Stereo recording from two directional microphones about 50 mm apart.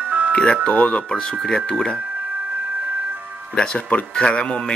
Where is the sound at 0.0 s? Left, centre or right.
Right.